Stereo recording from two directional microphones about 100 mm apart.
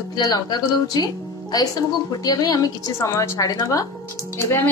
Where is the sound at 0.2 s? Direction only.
40° left (ahead or behind).